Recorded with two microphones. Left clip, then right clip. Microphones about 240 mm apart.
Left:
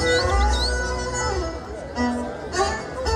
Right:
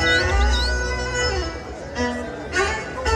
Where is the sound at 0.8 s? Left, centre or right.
Left.